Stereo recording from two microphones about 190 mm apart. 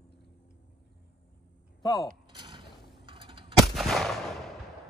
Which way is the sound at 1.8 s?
20° left (ahead or behind).